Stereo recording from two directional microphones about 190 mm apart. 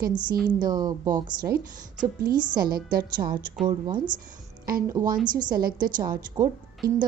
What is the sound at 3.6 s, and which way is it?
A woman's voice, 25° right (ahead or behind).